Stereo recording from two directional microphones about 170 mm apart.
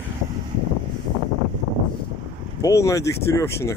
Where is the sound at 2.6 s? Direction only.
20° left (ahead or behind).